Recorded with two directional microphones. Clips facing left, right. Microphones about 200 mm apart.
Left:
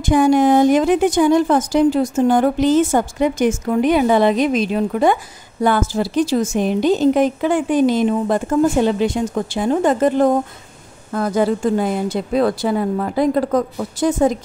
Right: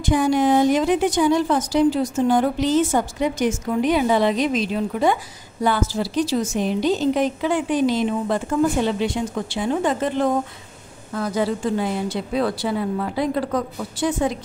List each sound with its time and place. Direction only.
0.0 s a woman's voice: 50° left (ahead or behind)